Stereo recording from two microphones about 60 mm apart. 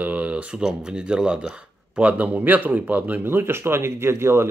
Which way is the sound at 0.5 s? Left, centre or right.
Centre.